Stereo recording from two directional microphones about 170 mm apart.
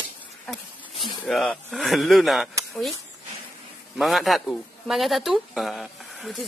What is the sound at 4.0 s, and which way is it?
Speech, centre (ahead or behind).